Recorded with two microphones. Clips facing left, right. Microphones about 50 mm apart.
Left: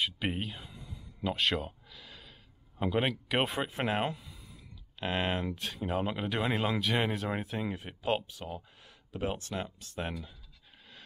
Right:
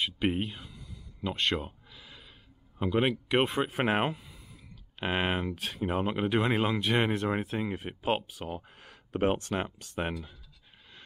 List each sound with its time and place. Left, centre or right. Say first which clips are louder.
0.0 s speech: right 4 dB; centre
1.6 s a sound: even; centre
2.8 s speech: right 3 dB; centre
3.7 s speech: right 4 dB; centre
5.3 s speech: right 2 dB; centre
8.5 s speech: right 3 dB; right